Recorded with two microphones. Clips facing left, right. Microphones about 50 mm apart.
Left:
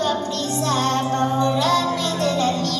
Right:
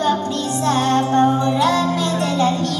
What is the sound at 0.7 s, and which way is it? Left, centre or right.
Music, right.